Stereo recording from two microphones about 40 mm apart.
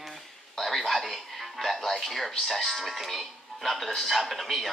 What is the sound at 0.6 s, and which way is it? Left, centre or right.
A man's voice, centre.